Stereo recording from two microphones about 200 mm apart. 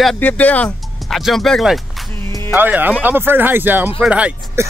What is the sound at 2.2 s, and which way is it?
Music, 15° left (ahead or behind).